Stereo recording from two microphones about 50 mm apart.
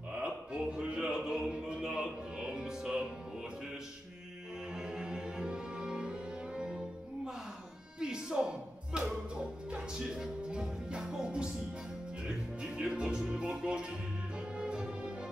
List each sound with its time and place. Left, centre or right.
0.1 s a sound: right
1.8 s music: centre
4.7 s music: centre
8.0 s music: centre